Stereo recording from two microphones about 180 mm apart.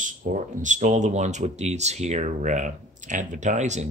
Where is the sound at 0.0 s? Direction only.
45° right (ahead or behind).